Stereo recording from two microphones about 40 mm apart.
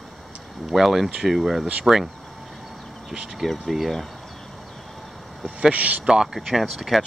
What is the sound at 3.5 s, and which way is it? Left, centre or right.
Speech, centre.